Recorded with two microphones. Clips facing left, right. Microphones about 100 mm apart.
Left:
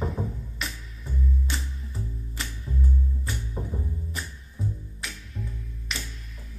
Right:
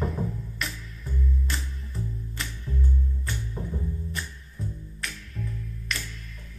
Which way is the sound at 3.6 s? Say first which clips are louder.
Left 2 dB; 25° left (ahead or behind).